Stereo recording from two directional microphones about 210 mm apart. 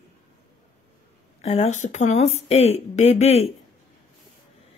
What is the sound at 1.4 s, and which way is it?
Speech, 30° left (ahead or behind).